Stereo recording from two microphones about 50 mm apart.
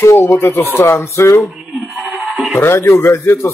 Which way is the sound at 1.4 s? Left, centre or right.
Centre.